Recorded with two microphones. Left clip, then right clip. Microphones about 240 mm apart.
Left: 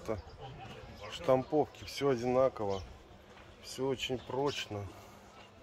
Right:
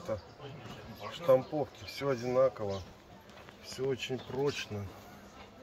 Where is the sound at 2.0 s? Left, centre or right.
Left.